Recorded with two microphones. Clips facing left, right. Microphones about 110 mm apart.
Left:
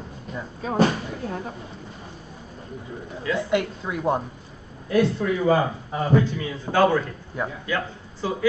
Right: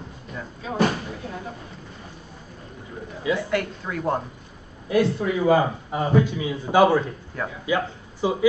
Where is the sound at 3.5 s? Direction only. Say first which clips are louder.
Left 2 dB; 20° left (ahead or behind).